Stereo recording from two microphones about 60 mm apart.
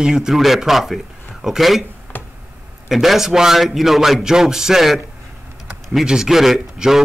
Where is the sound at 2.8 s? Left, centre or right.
Centre.